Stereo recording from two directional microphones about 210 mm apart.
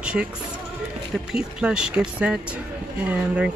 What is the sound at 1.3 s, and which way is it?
Speech, 5° right (ahead or behind).